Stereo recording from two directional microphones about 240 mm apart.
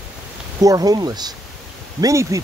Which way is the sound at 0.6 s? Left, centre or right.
Centre.